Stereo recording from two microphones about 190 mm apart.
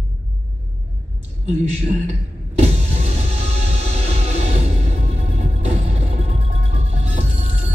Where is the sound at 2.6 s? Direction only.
35° right (ahead or behind).